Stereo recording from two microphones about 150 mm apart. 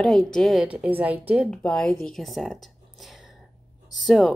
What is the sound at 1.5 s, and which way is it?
A woman's voice, 5° left (ahead or behind).